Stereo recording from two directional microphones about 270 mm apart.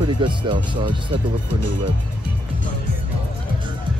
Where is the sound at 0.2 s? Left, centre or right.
Centre.